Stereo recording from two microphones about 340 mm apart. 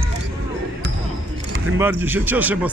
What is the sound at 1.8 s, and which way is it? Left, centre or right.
Speech, centre.